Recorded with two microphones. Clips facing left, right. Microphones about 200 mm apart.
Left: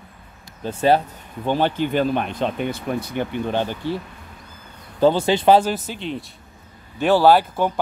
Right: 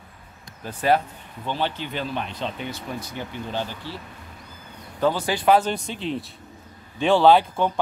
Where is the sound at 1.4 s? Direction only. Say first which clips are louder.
Left 7 dB; 50° left (ahead or behind).